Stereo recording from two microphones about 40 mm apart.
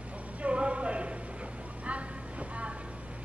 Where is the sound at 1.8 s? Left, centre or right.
Right.